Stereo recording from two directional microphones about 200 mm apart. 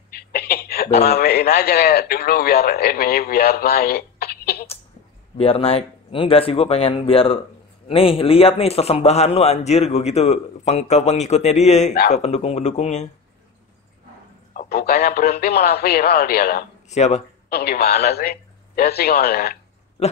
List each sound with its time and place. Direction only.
0.1 s a sound: 50° left (ahead or behind)
1.0 s a man's voice: 50° left (ahead or behind)
5.4 s a man's voice: 30° left (ahead or behind)
14.5 s a man's voice: 45° left (ahead or behind)
16.9 s a man's voice: 35° left (ahead or behind)
17.5 s a man's voice: 50° left (ahead or behind)
20.0 s pig: 30° left (ahead or behind)